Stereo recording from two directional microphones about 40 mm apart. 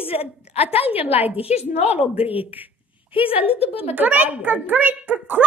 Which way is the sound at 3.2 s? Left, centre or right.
Right.